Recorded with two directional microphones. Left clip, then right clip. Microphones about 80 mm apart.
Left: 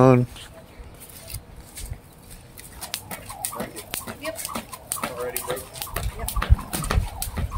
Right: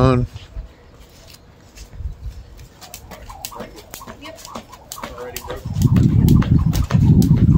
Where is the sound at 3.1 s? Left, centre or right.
Left.